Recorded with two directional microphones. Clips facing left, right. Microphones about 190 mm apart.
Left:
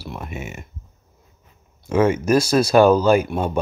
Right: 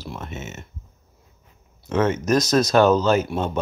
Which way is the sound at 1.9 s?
10° left (ahead or behind).